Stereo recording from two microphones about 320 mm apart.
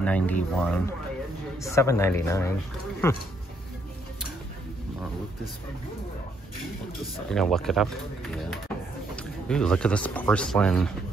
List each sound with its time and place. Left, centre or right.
0.0 s speech: centre
7.2 s speech: centre
9.1 s speech: centre